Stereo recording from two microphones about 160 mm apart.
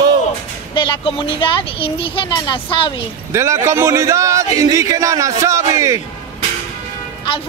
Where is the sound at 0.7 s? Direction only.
30° left (ahead or behind).